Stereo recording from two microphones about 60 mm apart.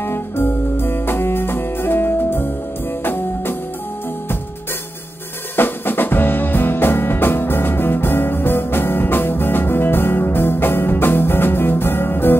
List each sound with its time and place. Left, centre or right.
0.0 s music: left
5.6 s music: left